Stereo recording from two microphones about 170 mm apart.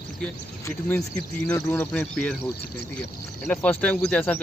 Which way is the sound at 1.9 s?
5° left (ahead or behind).